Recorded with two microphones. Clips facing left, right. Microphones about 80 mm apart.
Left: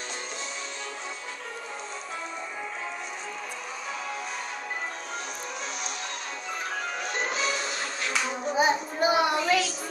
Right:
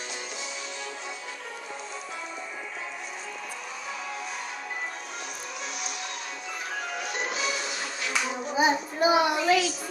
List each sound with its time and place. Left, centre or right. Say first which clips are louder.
7.0 s music: left 2 dB; left
8.5 s child singing: right 1 dB; centre